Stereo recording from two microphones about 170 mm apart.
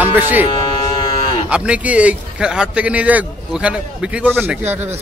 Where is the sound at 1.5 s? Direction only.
5° right (ahead or behind).